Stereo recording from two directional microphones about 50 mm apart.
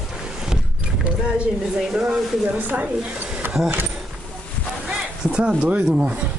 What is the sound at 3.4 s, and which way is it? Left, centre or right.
Keys jangling, right.